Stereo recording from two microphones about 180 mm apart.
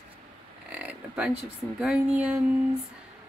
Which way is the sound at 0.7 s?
5° right (ahead or behind).